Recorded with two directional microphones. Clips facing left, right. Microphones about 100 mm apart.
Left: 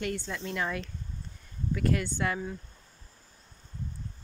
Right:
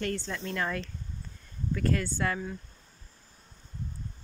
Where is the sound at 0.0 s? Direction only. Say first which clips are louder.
Right 1 dB; 10° left (ahead or behind).